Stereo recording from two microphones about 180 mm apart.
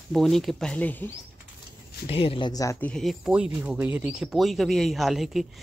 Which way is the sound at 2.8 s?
5° left (ahead or behind).